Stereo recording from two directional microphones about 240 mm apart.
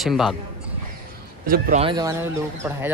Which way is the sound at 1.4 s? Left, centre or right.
Right.